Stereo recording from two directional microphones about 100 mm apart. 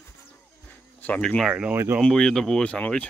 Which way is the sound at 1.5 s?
10° right (ahead or behind).